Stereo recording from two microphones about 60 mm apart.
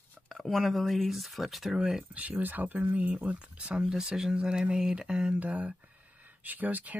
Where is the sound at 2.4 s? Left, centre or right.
Right.